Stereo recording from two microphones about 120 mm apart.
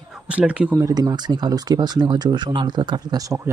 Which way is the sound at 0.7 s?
30° right (ahead or behind).